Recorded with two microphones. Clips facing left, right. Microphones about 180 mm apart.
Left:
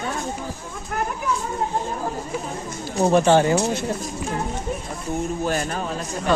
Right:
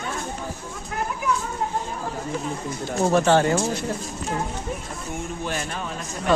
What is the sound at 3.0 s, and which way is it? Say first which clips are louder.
Speech: left 2 dB; 15° left (ahead or behind).